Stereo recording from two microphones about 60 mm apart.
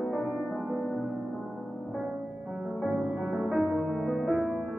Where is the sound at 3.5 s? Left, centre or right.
Centre.